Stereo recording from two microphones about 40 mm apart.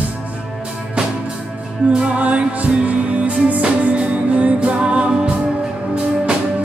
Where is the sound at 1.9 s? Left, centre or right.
Right.